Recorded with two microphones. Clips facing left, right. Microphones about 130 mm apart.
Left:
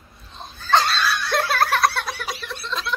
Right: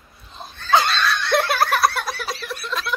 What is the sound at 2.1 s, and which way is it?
Giggle, 15° left (ahead or behind).